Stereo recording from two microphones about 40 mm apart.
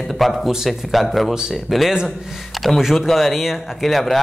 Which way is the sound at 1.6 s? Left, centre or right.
Centre.